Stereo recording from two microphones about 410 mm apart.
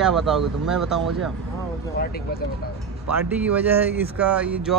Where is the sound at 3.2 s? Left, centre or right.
Centre.